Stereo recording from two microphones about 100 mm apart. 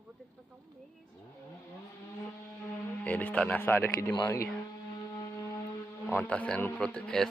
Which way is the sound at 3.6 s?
25° left (ahead or behind).